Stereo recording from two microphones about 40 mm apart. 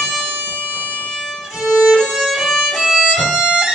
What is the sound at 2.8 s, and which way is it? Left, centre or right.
Violin, centre.